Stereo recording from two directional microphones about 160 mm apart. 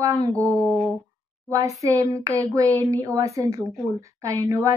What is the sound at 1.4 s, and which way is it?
A woman's voice, 20° right (ahead or behind).